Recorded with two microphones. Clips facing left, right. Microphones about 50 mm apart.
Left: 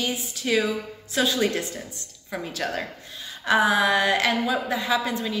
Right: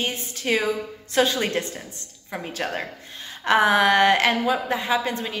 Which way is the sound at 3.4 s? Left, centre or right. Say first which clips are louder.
Right 2 dB; right.